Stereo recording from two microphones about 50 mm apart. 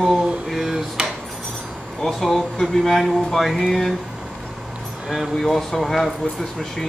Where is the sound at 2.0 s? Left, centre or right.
Centre.